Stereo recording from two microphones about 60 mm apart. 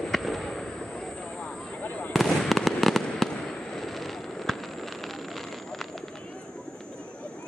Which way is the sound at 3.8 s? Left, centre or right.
Centre.